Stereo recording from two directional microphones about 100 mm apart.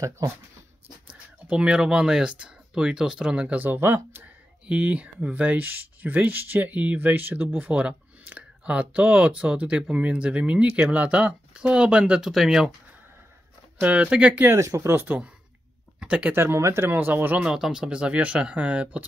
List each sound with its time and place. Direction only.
0.2 s speech: 35° right (ahead or behind)
1.5 s speech: 10° right (ahead or behind)
13.7 s speech: 15° right (ahead or behind)
14.6 s speech: 30° right (ahead or behind); by 16.3 s 10° right (ahead or behind)
16.3 s speech: 25° right (ahead or behind)
17.4 s speech: 5° right (ahead or behind)